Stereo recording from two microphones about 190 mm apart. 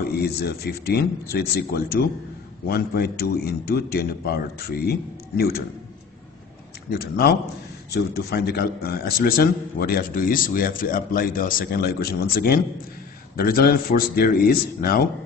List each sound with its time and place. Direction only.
0.2 s a man's voice: 55° left (ahead or behind)
6.9 s a man's voice: 55° left (ahead or behind)